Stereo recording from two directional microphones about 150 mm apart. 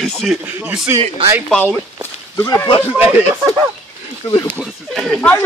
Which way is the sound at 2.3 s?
20° left (ahead or behind).